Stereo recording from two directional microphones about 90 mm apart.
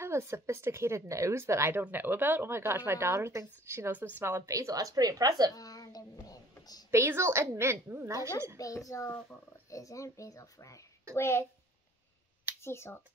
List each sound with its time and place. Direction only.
0.0 s speech: 30° right (ahead or behind)
5.5 s a sound: 45° left (ahead or behind)
6.9 s speech: 30° right (ahead or behind)
8.5 s speech: 40° left (ahead or behind)
12.6 s speech: 30° left (ahead or behind)